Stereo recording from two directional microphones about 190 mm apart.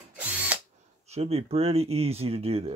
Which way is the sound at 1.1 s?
30° right (ahead or behind).